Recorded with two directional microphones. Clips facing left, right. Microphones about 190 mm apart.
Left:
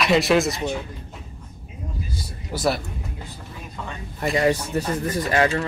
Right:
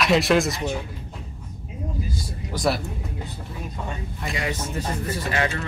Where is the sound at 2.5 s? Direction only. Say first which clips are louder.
Left 1 dB; centre (ahead or behind).